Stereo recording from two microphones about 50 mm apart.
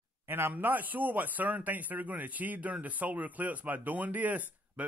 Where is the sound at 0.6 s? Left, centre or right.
Right.